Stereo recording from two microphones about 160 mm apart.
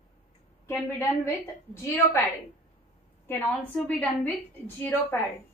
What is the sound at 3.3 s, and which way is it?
A woman's voice, 10° left (ahead or behind).